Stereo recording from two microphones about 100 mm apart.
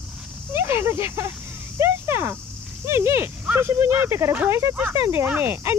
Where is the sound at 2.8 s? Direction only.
25° right (ahead or behind).